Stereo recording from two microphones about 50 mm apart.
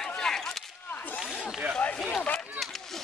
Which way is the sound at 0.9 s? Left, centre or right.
Left.